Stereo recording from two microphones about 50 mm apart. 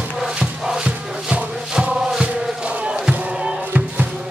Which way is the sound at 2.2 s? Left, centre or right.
Right.